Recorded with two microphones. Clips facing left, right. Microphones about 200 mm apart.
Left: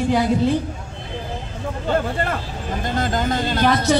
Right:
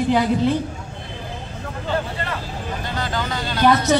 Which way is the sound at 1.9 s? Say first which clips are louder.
Left 4 dB; 50° left (ahead or behind).